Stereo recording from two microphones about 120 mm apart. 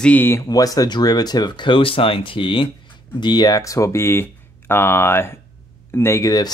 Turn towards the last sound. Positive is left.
turn(degrees=30)  # may be behind; listen again after turning